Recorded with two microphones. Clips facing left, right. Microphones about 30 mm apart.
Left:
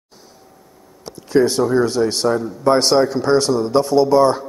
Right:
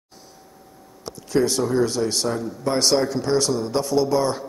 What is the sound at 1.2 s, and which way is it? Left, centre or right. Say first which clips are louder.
A man's voice: left 5 dB; centre.